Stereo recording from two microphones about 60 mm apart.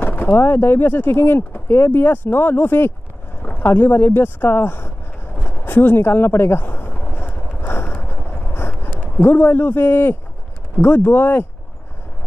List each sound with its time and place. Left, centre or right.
0.0 s speech: left
5.4 s vehicle: left
8.5 s a sound: left
9.2 s speech: left